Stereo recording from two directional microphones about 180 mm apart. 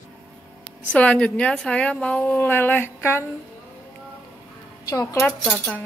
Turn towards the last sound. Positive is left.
turn(degrees=5)  # may be behind; listen again after turning